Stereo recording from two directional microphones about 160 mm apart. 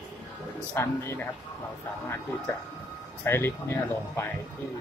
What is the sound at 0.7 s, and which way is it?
Speech, 15° left (ahead or behind).